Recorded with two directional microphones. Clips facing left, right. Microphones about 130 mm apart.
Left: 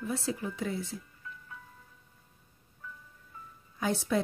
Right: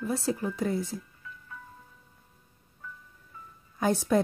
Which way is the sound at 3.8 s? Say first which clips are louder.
Right 5 dB; 45° right (ahead or behind).